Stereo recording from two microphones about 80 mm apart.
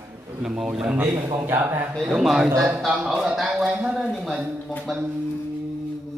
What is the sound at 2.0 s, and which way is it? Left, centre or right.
A man's voice, centre.